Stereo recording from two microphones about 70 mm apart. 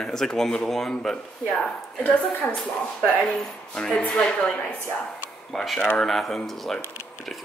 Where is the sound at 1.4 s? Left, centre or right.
Centre.